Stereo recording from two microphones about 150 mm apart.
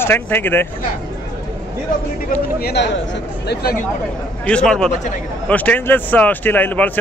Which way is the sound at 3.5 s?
90° left.